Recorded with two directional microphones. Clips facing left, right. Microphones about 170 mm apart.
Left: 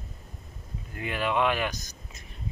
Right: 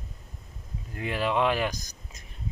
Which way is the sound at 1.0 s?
30° right (ahead or behind).